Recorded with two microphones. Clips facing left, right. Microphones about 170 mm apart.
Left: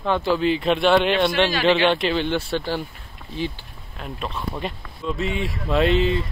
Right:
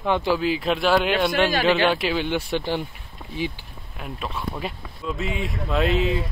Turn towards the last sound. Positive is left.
turn(degrees=0)  # may be behind; listen again after turning